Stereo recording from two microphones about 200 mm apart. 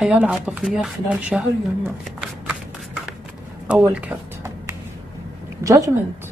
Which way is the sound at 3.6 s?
5° right (ahead or behind).